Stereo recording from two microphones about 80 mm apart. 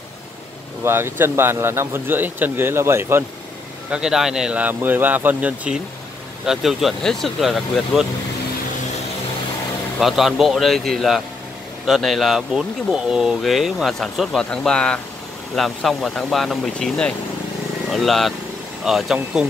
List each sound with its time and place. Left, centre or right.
0.8 s speech: right
3.9 s speech: centre
6.4 s speech: centre
9.9 s speech: centre
17.8 s speech: centre